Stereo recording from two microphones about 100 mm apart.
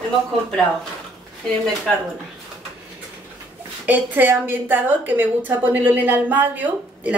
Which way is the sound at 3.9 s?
20° right (ahead or behind).